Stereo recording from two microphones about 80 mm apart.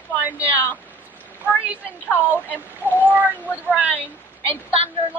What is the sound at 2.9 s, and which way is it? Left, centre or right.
A woman's voice, right.